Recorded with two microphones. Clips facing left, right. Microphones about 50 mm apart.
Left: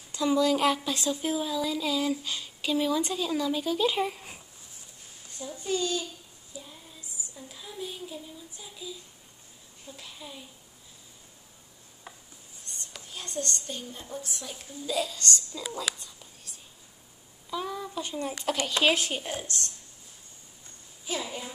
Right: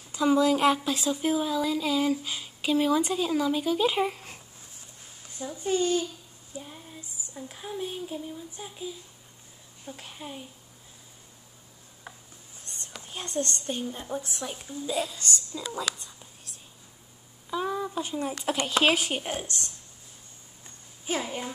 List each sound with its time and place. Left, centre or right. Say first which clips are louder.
0.1 s speech: right 2 dB; centre
5.6 s a woman's voice: right 4 dB; right
6.5 s a sound: right 4 dB; right
9.8 s a woman's voice: right 4 dB; right
13.0 s a woman's voice: right 4 dB; right
14.9 s a woman's voice: even; centre
15.2 s speech: left 1 dB; centre
15.9 s speech: right 1 dB; centre
17.5 s a sound: right 4 dB; right
18.0 s speech: right 1 dB; centre
19.1 s a woman's voice: right 2 dB; right
21.0 s a woman's voice: right 3 dB; right